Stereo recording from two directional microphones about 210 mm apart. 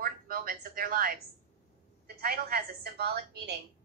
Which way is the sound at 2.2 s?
50° right (ahead or behind).